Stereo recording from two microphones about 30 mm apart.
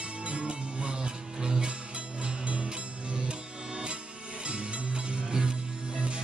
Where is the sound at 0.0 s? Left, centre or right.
Right.